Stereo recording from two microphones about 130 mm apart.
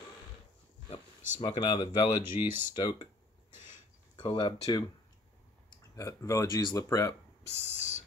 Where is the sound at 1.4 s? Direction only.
40° left (ahead or behind).